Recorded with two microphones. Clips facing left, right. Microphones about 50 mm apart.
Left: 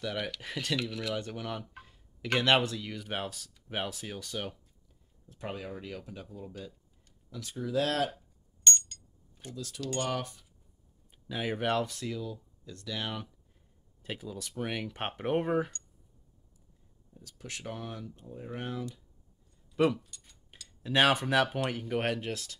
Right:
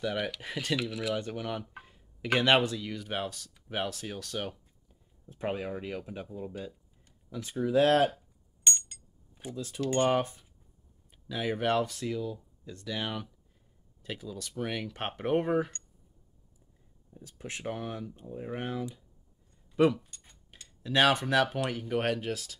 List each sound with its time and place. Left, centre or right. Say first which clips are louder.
0.0 s dishes: right 3 dB; centre
5.2 s speech: right 6 dB; right
8.6 s cutlery: left 2 dB; centre
9.7 s speech: right 7 dB; right
11.2 s speech: right 2 dB; centre
11.7 s speech: right 2 dB; centre
14.0 s dishes: even; centre
17.2 s speech: right 4 dB; right
20.1 s a sound: even; right
20.8 s speech: right 1 dB; centre
21.8 s dishes: right 2 dB; centre